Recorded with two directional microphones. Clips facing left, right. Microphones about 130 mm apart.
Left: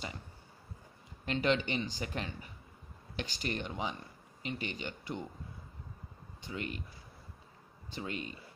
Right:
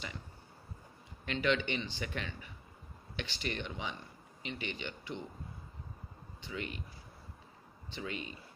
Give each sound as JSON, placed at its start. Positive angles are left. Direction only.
{"t": 1.2, "sound": "speech", "side_deg": 40}
{"t": 6.4, "sound": "speech", "side_deg": 40}
{"t": 8.0, "sound": "speech", "side_deg": 40}